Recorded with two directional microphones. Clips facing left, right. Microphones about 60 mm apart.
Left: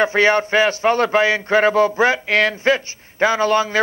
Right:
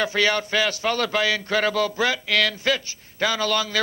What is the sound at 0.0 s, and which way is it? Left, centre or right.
A man's voice, left.